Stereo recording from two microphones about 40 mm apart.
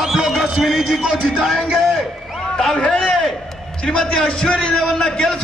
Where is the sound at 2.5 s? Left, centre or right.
Centre.